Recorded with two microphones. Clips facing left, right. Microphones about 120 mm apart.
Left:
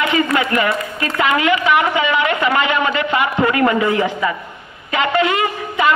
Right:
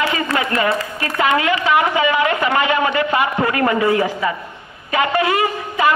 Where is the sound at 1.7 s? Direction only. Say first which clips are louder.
Even; 25° right (ahead or behind).